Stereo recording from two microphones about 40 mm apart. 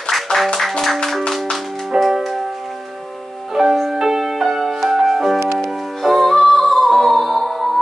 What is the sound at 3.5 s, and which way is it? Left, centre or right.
Music, centre.